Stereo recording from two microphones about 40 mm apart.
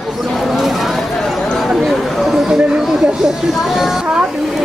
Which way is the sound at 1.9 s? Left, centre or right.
Centre.